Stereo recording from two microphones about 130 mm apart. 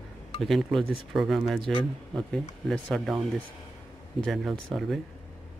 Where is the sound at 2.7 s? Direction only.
Centre (ahead or behind).